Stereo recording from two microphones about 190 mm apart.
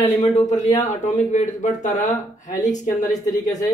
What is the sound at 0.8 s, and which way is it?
Speech, 40° left (ahead or behind).